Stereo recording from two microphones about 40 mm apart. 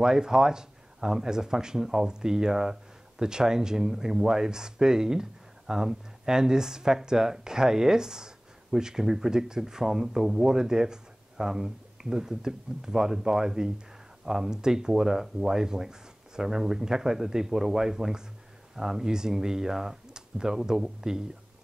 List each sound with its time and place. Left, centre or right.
0.0 s speech: centre